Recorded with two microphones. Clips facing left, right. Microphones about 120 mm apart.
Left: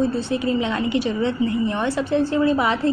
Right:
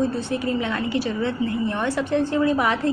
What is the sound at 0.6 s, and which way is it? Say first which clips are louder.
A woman's voice: left 3 dB; 20° left (ahead or behind).